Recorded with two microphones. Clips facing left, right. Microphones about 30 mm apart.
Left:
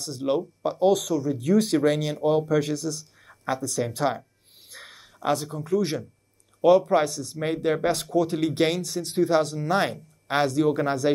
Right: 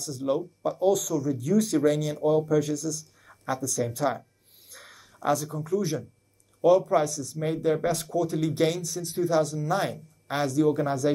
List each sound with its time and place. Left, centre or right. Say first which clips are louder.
0.0 s speech: left 2 dB; left